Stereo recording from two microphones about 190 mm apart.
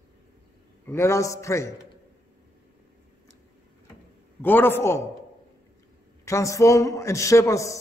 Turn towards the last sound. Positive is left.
turn(degrees=15)  # may be behind; listen again after turning